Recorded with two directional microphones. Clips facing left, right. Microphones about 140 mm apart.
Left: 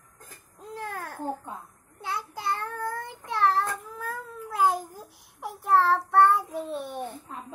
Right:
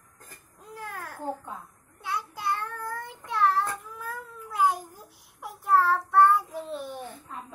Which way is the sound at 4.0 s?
35° left (ahead or behind).